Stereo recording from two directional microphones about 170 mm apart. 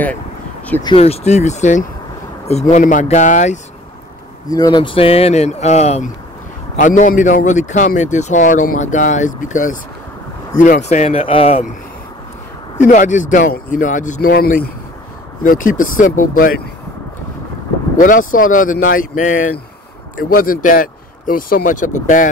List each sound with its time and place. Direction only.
0.8 s a man's voice: 35° left (ahead or behind)
4.5 s speech: 20° left (ahead or behind); by 6.0 s 40° left (ahead or behind)
6.8 s a man's voice: 50° left (ahead or behind)
12.8 s a man's voice: 50° left (ahead or behind)
14.3 s speech: 65° left (ahead or behind)
15.4 s a man's voice: 55° left (ahead or behind)
17.9 s a man's voice: 50° left (ahead or behind)